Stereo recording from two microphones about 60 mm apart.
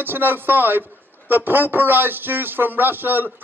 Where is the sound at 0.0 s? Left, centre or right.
Right.